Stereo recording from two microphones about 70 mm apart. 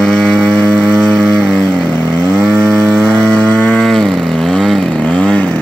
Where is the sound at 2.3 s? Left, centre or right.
Centre.